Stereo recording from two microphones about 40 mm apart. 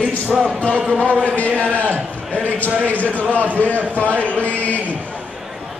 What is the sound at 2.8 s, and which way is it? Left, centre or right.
Chant, left.